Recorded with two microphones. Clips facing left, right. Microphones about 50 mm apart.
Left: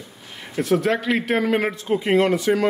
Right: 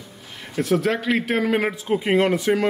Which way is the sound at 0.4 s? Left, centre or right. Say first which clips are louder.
Left 1 dB; centre.